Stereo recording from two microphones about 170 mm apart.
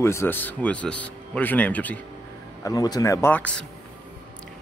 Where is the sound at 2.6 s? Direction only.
20° left (ahead or behind).